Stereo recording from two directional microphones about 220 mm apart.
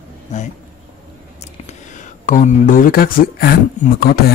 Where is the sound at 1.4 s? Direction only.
30° left (ahead or behind).